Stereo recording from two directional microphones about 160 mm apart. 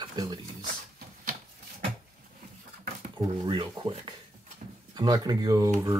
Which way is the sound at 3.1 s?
30° right (ahead or behind).